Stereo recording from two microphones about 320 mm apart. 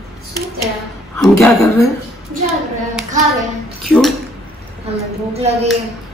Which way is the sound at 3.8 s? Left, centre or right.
Centre.